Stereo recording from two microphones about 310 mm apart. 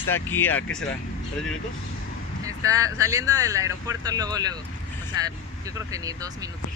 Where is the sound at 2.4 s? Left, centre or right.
Centre.